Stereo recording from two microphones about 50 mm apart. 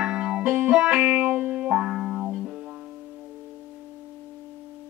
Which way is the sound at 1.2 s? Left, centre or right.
Right.